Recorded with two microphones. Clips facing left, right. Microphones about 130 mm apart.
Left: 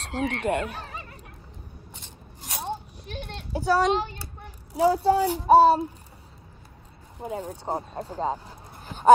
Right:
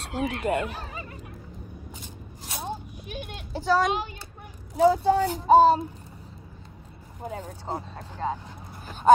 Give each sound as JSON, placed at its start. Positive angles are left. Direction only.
{"t": 0.1, "sound": "speech", "side_deg": -5}
{"t": 2.4, "sound": "a sound", "side_deg": 0}
{"t": 3.5, "sound": "speech", "side_deg": 10}
{"t": 3.8, "sound": "a child's voice", "side_deg": -10}
{"t": 4.7, "sound": "speech", "side_deg": 10}
{"t": 7.2, "sound": "speech", "side_deg": 5}
{"t": 8.0, "sound": "a sound", "side_deg": 30}